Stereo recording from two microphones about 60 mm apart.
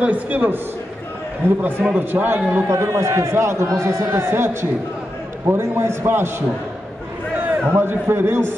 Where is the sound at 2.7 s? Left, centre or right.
Right.